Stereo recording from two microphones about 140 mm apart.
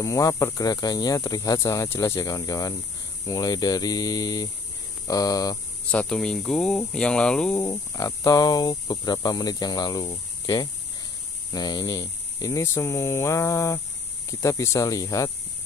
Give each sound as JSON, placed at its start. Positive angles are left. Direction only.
{"t": 0.0, "sound": "speech", "side_deg": 25}
{"t": 5.9, "sound": "speech", "side_deg": 5}
{"t": 7.6, "sound": "speech", "side_deg": 25}